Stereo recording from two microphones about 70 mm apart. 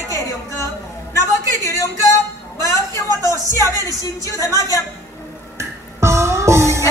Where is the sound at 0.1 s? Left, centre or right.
Left.